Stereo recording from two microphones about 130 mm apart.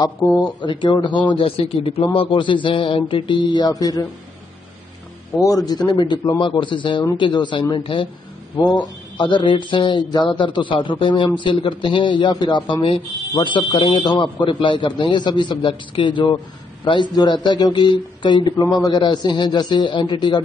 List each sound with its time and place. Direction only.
0.2 s a man's voice: 25° left (ahead or behind)
0.6 s a man's voice: 35° left (ahead or behind)
5.4 s a man's voice: 25° left (ahead or behind)